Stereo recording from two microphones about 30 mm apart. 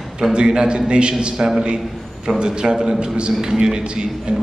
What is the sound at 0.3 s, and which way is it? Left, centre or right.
A man's voice, right.